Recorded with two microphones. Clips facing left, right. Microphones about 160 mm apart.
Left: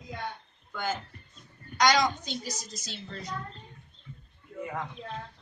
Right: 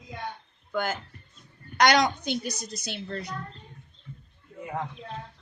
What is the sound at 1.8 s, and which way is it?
A woman's voice, 65° right (ahead or behind).